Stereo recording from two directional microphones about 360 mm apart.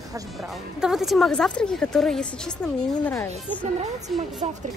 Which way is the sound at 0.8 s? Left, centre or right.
Centre.